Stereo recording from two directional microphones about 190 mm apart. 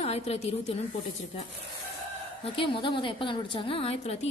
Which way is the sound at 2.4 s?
25° left (ahead or behind).